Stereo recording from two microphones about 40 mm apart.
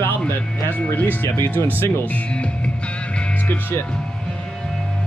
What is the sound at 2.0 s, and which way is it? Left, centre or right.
Speech, left.